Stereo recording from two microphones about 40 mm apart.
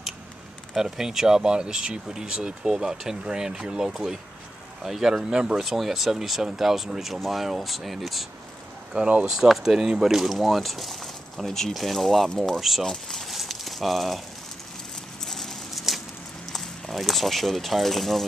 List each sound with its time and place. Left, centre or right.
0.7 s speech: centre
5.3 s speech: right
5.6 s speech: centre
8.9 s speech: right
9.3 s speech: centre
12.8 s speech: centre
13.3 s a sound: centre
15.2 s a sound: centre
16.5 s speech: centre